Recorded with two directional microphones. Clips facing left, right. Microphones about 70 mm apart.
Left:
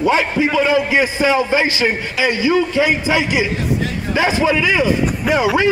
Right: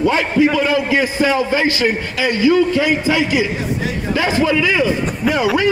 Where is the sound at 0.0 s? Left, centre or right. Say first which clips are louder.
Right 1 dB; left.